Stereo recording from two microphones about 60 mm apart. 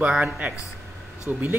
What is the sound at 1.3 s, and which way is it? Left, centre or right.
Speech, right.